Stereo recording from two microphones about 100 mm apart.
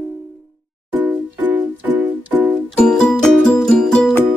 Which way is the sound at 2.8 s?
5° left (ahead or behind).